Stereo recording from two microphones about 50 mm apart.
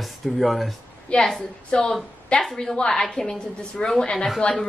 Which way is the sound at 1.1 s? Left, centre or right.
Left.